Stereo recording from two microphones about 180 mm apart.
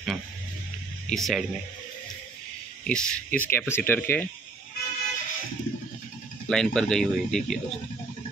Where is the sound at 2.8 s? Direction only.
5° left (ahead or behind).